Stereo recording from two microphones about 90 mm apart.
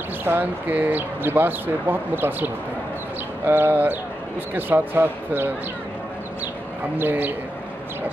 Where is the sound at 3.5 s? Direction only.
25° right (ahead or behind).